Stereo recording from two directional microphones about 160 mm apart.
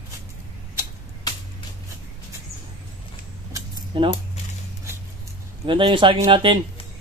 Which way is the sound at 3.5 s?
30° right (ahead or behind).